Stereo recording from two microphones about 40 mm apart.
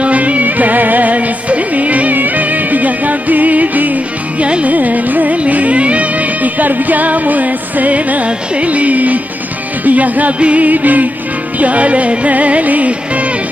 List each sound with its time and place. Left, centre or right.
0.0 s music: right
4.6 s carnatic music: right
5.4 s music: right